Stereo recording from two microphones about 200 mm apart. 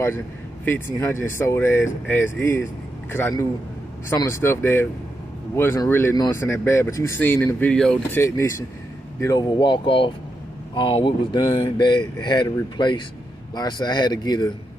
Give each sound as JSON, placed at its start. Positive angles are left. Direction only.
{"t": 0.7, "sound": "speech", "side_deg": 10}